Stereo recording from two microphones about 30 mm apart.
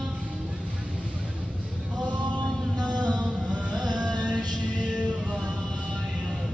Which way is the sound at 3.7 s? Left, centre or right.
Right.